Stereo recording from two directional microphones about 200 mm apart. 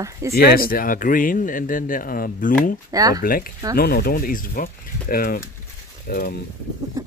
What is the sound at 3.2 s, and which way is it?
Speech, 45° left (ahead or behind).